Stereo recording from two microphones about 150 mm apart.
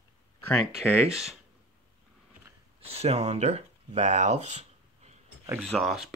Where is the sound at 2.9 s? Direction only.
45° right (ahead or behind).